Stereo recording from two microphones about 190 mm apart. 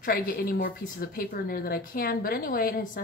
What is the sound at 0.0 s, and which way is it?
Speech, 50° left (ahead or behind).